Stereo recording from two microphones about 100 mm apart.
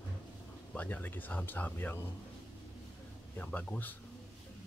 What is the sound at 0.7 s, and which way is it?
Speech, 15° left (ahead or behind).